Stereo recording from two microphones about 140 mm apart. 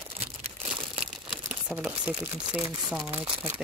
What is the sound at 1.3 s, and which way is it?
Speech, 5° right (ahead or behind).